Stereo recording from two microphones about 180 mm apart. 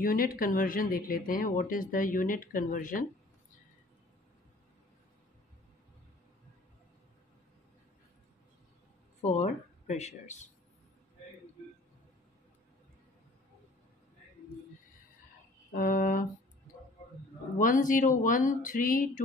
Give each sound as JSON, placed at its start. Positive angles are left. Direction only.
{"t": 0.0, "sound": "speech", "side_deg": 50}
{"t": 9.2, "sound": "speech", "side_deg": 40}
{"t": 15.7, "sound": "speech", "side_deg": 50}
{"t": 17.6, "sound": "speech", "side_deg": 45}